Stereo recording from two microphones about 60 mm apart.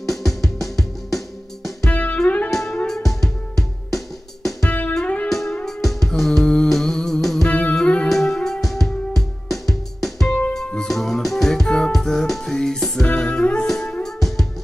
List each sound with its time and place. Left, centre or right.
0.0 s music: centre
1.9 s music: left
2.5 s music: centre
4.6 s music: left
5.7 s music: centre
7.4 s music: left
8.1 s music: centre
13.0 s music: left; by 14.4 s centre